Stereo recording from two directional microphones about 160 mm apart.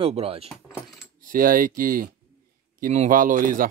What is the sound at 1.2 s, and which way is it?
Speech, 60° right (ahead or behind).